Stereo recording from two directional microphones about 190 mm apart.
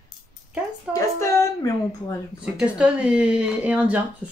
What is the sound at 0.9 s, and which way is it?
A woman's voice, 15° left (ahead or behind).